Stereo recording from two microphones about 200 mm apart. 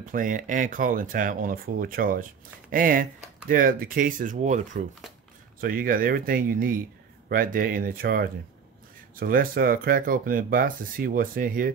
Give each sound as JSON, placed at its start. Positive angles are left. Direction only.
{"t": 0.0, "sound": "speech", "side_deg": -40}